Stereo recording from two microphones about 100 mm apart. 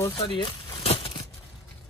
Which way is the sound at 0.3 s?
60° left (ahead or behind).